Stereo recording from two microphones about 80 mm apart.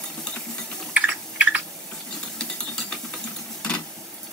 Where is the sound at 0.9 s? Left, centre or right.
Centre.